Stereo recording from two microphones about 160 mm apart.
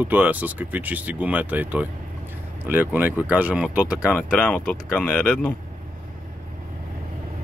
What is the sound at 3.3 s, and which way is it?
Speech, 10° right (ahead or behind).